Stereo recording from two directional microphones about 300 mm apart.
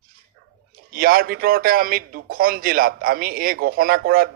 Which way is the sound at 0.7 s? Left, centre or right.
Right.